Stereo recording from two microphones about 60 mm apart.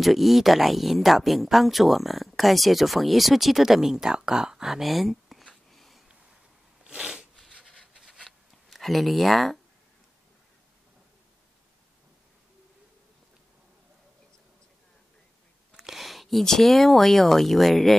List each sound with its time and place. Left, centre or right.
0.0 s speech: centre
6.9 s a sound: centre
7.9 s writing: centre
15.7 s speech: centre